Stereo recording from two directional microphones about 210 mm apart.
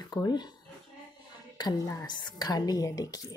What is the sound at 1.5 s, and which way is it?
A woman's voice, 15° left (ahead or behind).